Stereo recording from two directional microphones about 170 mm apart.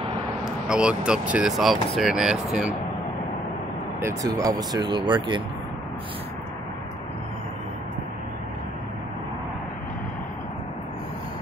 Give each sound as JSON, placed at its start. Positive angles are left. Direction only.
{"t": 0.5, "sound": "speech", "side_deg": -5}
{"t": 4.0, "sound": "speech", "side_deg": -20}